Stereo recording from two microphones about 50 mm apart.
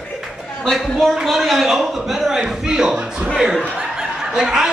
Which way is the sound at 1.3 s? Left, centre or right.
Centre.